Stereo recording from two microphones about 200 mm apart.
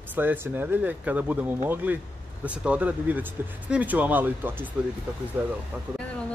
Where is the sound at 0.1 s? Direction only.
10° right (ahead or behind).